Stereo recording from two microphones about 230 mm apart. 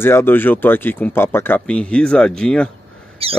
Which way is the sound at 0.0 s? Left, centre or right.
Centre.